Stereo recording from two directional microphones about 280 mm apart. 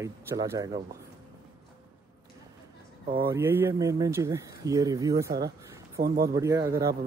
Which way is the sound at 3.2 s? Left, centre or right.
Centre.